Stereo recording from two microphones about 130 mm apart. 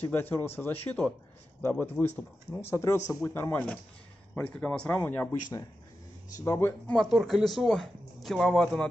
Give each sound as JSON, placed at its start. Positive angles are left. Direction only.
{"t": 0.1, "sound": "speech", "side_deg": 15}
{"t": 6.4, "sound": "speech", "side_deg": 20}
{"t": 6.9, "sound": "speech", "side_deg": 0}